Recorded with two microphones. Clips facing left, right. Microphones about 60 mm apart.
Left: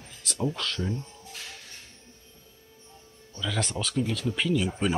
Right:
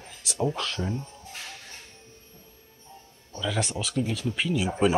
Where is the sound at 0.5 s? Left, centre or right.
Centre.